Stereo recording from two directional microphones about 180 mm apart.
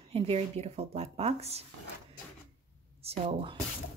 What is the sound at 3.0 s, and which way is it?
Speech, 30° right (ahead or behind).